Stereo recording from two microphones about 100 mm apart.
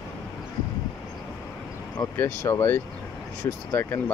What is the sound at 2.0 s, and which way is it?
Speech, 25° left (ahead or behind).